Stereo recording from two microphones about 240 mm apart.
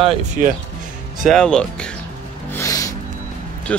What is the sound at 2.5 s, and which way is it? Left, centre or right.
Music, centre.